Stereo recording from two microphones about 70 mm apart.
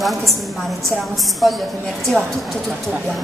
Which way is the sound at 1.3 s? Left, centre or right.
Centre.